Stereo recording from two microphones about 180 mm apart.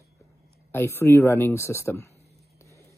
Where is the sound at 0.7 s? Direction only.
15° left (ahead or behind).